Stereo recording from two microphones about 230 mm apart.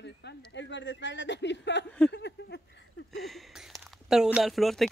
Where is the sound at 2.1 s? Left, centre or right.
Left.